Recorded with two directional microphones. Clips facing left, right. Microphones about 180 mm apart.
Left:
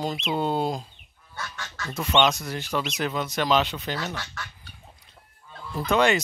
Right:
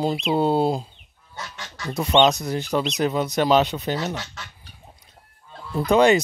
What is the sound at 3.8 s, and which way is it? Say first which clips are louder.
Goose: right 5 dB; 20° right (ahead or behind).